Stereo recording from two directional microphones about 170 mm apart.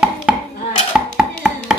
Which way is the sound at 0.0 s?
5° right (ahead or behind).